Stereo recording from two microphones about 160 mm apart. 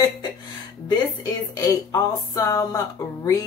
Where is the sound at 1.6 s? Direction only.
20° left (ahead or behind).